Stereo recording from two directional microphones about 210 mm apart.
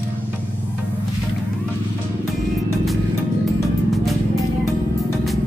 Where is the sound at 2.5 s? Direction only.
Centre (ahead or behind).